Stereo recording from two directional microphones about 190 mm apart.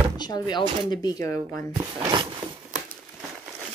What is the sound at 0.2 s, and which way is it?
Speech, 25° left (ahead or behind).